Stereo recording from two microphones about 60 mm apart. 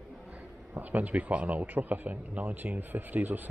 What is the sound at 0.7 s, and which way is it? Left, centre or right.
Speech, right.